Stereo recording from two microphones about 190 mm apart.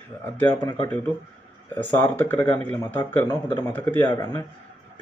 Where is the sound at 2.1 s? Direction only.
10° left (ahead or behind).